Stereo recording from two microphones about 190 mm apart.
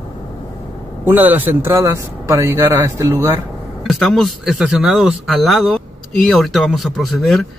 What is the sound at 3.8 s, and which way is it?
Speech, centre (ahead or behind).